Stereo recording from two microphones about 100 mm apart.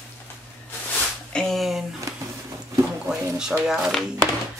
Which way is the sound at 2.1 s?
30° right (ahead or behind).